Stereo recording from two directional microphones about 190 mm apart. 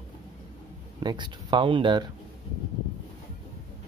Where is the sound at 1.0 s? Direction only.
25° right (ahead or behind).